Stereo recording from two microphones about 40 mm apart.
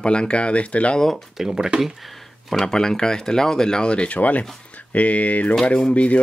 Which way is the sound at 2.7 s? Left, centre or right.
Centre.